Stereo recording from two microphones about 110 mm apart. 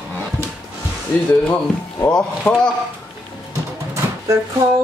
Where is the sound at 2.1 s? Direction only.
10° left (ahead or behind).